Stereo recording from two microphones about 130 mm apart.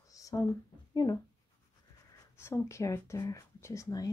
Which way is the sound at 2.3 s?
20° left (ahead or behind).